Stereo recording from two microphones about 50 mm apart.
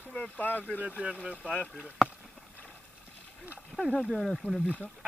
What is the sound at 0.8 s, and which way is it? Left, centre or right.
Speech, right.